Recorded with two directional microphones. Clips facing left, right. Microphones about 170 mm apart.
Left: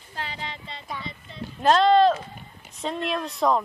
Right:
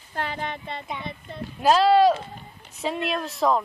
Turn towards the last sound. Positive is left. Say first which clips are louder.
# even
turn(degrees=0)  # may be behind; listen again after turning